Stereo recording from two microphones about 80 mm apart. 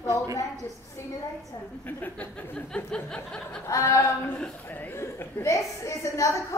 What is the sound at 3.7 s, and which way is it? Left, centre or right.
A woman's voice, left.